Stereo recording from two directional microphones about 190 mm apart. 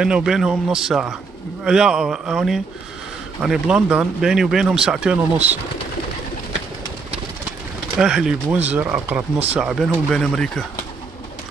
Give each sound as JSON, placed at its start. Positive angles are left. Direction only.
{"t": 0.0, "sound": "speech", "side_deg": -5}
{"t": 8.0, "sound": "speech", "side_deg": -5}